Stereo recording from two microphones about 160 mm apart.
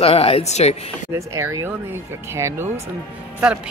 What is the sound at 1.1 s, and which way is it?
Speech, 20° right (ahead or behind).